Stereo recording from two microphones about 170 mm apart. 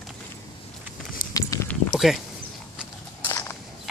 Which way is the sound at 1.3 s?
15° left (ahead or behind).